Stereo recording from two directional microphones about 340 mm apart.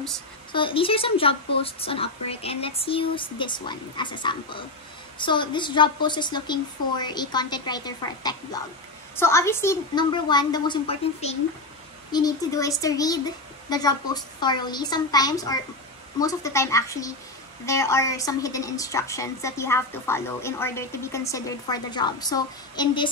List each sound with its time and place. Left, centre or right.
0.5 s a woman's voice: centre